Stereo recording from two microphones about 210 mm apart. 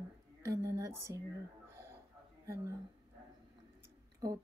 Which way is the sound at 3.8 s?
15° right (ahead or behind).